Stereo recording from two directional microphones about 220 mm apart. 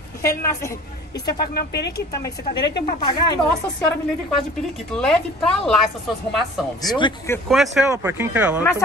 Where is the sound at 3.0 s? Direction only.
20° left (ahead or behind).